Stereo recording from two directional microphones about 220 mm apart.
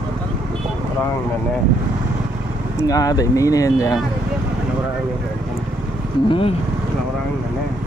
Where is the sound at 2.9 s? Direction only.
15° left (ahead or behind).